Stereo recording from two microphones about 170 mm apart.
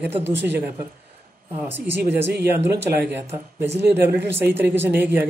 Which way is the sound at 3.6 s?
80° right.